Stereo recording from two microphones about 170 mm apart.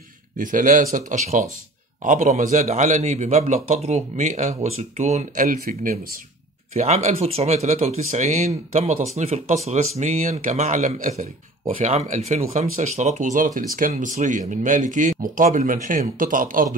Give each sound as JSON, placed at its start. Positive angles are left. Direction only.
{"t": 0.4, "sound": "speech", "side_deg": -50}
{"t": 6.7, "sound": "speech", "side_deg": -40}